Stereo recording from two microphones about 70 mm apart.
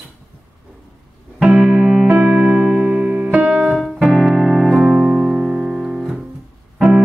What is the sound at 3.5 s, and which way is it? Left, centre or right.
Music, centre.